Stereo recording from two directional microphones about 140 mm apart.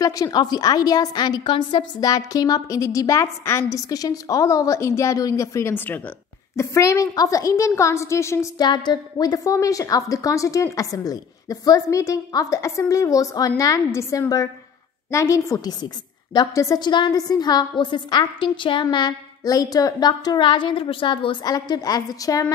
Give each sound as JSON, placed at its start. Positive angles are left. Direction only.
{"t": 0.0, "sound": "a woman's voice", "side_deg": 25}
{"t": 8.6, "sound": "a woman's voice", "side_deg": 30}